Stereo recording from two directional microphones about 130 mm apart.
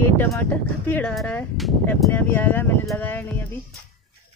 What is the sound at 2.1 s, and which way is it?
Speech, 15° left (ahead or behind).